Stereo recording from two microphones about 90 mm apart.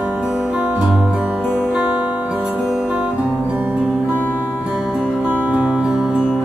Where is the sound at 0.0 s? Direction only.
10° right (ahead or behind).